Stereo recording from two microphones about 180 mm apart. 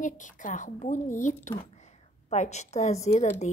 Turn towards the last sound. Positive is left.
turn(degrees=40)  # may be behind; listen again after turning